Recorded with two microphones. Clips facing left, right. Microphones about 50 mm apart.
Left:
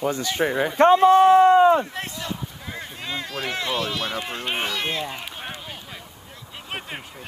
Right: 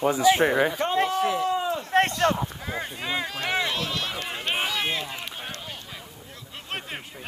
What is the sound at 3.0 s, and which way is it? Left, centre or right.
Speech, centre.